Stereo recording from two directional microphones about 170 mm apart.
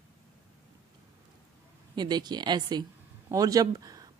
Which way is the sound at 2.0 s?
25° right (ahead or behind).